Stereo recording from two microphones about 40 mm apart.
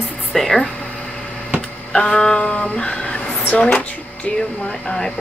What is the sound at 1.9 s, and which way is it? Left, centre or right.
Speech, centre.